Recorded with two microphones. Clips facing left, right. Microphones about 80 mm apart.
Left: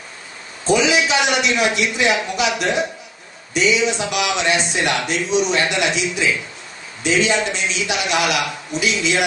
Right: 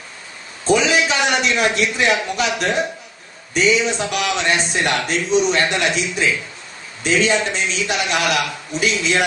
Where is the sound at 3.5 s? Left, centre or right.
Right.